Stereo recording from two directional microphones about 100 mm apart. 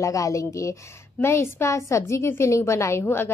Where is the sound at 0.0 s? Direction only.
35° left (ahead or behind).